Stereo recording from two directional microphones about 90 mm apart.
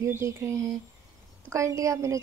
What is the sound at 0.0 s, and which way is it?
Speech, 30° right (ahead or behind).